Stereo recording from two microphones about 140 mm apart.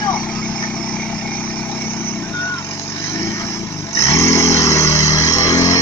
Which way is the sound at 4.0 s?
20° left (ahead or behind).